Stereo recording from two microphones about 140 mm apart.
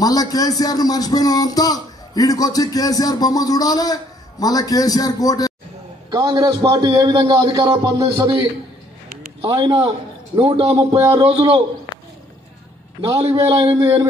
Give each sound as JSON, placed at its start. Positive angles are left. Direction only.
{"t": 0.0, "sound": "speech", "side_deg": 25}
{"t": 6.0, "sound": "a man's voice", "side_deg": -30}
{"t": 9.4, "sound": "a man's voice", "side_deg": -30}
{"t": 10.9, "sound": "a man's voice", "side_deg": -20}
{"t": 11.1, "sound": "a man's voice", "side_deg": -40}
{"t": 13.2, "sound": "a man's voice", "side_deg": -45}